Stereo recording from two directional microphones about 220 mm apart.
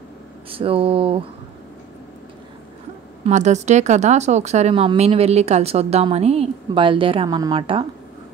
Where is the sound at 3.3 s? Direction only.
30° right (ahead or behind).